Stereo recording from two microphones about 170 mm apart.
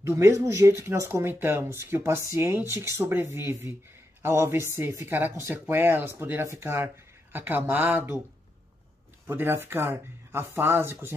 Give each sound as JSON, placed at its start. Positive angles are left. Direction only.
{"t": 0.0, "sound": "speech", "side_deg": -15}
{"t": 9.3, "sound": "speech", "side_deg": -15}